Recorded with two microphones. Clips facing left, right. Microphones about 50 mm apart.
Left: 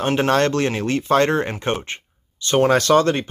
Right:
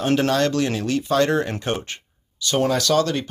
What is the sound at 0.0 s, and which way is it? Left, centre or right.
Speech, left.